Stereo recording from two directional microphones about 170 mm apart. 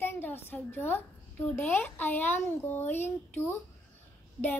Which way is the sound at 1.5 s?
10° left (ahead or behind).